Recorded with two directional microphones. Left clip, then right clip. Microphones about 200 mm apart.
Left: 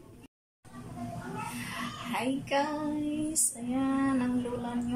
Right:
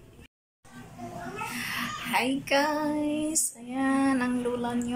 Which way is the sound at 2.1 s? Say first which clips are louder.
Right 5 dB; 5° right (ahead or behind).